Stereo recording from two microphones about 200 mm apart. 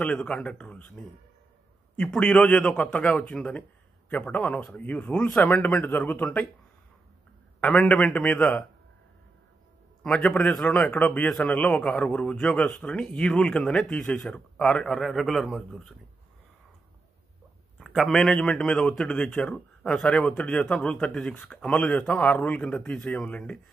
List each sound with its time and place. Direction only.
0.0 s a man's voice: 5° left (ahead or behind)
7.6 s speech: 5° left (ahead or behind)
10.0 s a man's voice: 5° left (ahead or behind)
17.7 s a man's voice: centre (ahead or behind)